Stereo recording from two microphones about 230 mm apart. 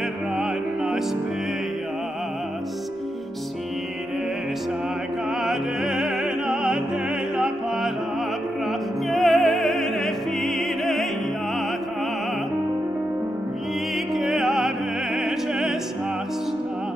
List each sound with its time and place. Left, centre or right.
0.4 s music: centre
5.3 s music: centre
13.9 s music: centre